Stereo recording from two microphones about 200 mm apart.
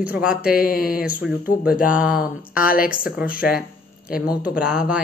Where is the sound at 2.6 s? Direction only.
45° left (ahead or behind).